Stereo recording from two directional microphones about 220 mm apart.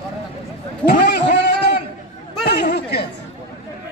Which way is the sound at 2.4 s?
45° left (ahead or behind).